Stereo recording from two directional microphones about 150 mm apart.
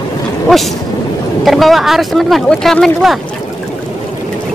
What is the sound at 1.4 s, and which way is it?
Speech, centre (ahead or behind).